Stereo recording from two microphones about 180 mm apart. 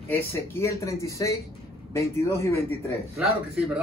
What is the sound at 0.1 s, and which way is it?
Speech, 15° left (ahead or behind).